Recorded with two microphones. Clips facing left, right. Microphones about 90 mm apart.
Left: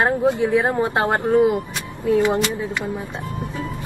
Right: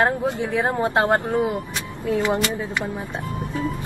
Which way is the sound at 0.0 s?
20° left (ahead or behind).